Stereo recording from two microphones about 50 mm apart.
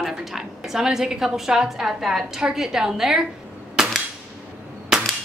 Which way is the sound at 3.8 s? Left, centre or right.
Centre.